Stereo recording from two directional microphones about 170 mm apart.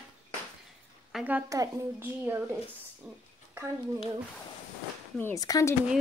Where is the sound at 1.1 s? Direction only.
10° right (ahead or behind).